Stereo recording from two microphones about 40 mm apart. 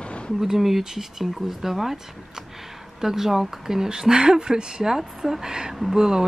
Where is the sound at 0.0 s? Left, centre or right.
Left.